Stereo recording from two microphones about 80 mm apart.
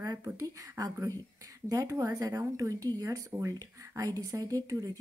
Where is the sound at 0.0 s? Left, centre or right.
Right.